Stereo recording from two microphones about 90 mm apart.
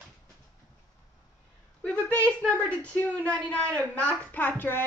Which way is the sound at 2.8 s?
15° left (ahead or behind).